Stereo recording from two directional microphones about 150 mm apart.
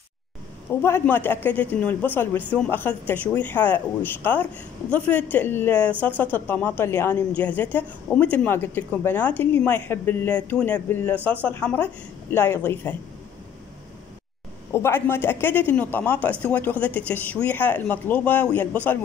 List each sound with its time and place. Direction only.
0.7 s a woman's voice: 15° left (ahead or behind)
14.7 s a woman's voice: 15° left (ahead or behind)